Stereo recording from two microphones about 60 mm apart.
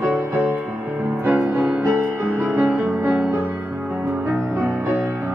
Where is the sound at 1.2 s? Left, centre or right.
Centre.